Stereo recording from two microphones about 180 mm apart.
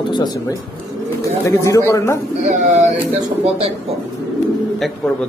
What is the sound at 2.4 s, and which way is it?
Speech, 45° right (ahead or behind).